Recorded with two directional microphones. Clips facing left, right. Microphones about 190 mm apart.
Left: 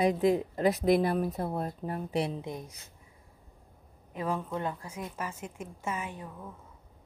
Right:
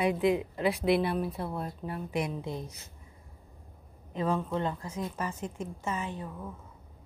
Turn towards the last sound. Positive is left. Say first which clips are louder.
# right 2 dB
turn(degrees=10)  # may be behind; listen again after turning